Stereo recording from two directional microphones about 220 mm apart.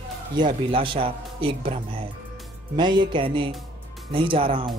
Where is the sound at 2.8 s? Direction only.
20° right (ahead or behind).